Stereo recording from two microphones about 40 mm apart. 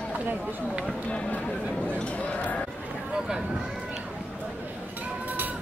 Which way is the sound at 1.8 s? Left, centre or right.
Left.